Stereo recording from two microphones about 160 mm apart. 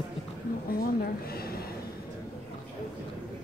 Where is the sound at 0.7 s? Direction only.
70° left (ahead or behind).